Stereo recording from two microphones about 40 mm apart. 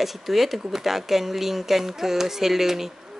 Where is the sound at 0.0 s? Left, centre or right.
Centre.